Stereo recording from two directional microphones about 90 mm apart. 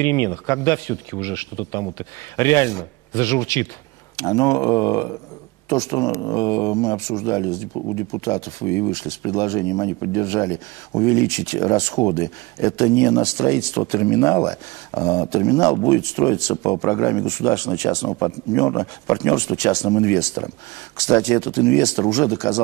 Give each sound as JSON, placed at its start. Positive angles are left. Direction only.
{"t": 0.0, "sound": "speech", "side_deg": 35}